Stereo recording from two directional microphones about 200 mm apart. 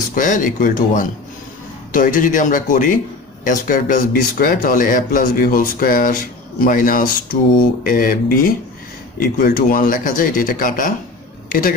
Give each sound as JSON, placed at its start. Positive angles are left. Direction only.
{"t": 0.1, "sound": "speech", "side_deg": 40}